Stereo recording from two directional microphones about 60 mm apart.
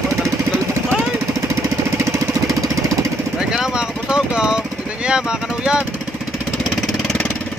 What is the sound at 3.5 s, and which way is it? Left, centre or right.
Vehicle, centre.